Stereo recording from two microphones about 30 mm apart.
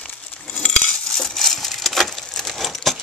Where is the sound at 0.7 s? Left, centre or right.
Left.